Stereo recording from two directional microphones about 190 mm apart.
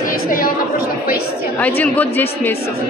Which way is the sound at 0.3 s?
50° left (ahead or behind).